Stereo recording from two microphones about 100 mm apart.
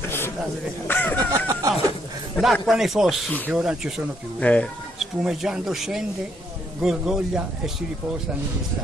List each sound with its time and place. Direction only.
0.8 s speech: 20° left (ahead or behind)
1.3 s a sound: 35° right (ahead or behind)
2.4 s speech: centre (ahead or behind)
4.4 s speech: 15° left (ahead or behind)
4.9 s speech: 5° right (ahead or behind)